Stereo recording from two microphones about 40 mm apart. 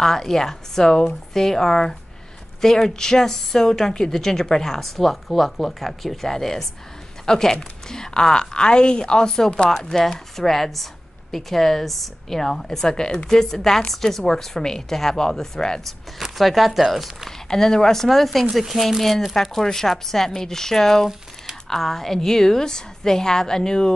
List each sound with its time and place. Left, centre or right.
0.0 s speech: centre
16.2 s speech: centre
17.5 s speech: centre